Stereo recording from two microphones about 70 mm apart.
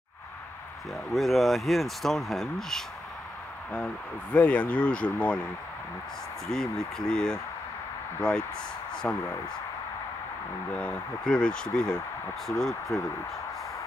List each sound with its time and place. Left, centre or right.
0.9 s speech: centre
3.7 s speech: centre
6.5 s speech: centre
10.7 s speech: centre